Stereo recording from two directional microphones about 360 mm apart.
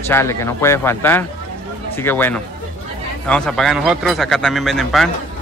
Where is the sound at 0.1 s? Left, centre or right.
Centre.